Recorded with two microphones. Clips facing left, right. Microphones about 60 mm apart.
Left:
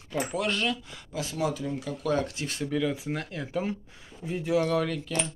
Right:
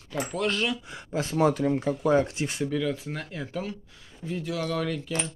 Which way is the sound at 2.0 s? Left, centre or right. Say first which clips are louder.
Right 4 dB; right.